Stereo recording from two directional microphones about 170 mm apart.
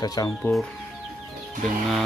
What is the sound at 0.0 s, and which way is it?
Speech, 20° left (ahead or behind).